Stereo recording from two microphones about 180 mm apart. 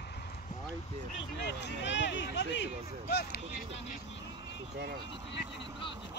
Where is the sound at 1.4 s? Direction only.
75° left (ahead or behind).